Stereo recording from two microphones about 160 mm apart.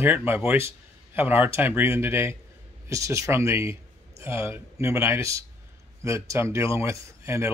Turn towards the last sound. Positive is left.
turn(degrees=-15)  # may be behind; listen again after turning